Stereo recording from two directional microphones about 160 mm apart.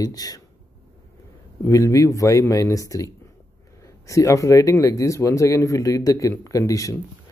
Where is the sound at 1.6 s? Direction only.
20° left (ahead or behind).